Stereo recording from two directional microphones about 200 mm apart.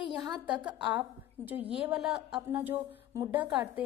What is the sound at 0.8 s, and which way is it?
A woman's voice, 10° right (ahead or behind).